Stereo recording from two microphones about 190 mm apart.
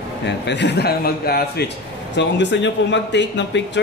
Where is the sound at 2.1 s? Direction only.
65° left (ahead or behind).